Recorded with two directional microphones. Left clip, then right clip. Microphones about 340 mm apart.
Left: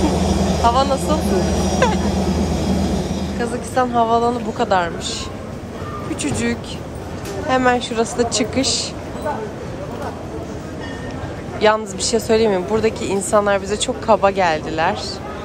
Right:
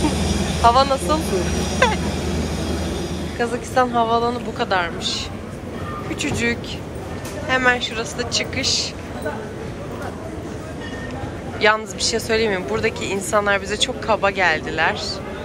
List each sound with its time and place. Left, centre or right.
0.0 s vehicle: left
0.7 s a woman's voice: centre
1.5 s vehicle: left
3.3 s a woman's voice: centre
6.2 s a woman's voice: centre
11.6 s a woman's voice: centre